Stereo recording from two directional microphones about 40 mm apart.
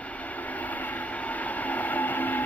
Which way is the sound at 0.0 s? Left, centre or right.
Left.